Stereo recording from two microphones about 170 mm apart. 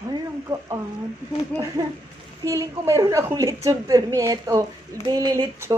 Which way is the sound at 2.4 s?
20° right (ahead or behind).